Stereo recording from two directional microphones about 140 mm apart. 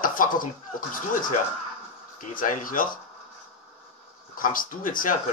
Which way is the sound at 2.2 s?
75° left (ahead or behind).